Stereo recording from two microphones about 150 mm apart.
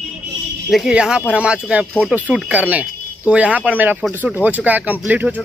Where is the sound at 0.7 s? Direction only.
5° right (ahead or behind).